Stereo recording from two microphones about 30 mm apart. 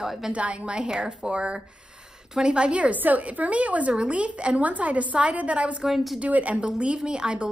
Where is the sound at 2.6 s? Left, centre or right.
Right.